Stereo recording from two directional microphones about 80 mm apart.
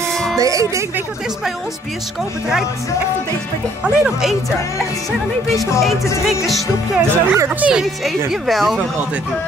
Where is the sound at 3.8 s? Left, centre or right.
Centre.